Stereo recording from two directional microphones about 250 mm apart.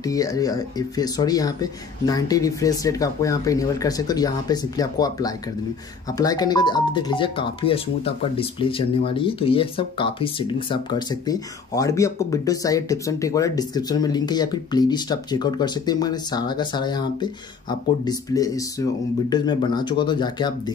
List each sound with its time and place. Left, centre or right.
0.0 s speech: centre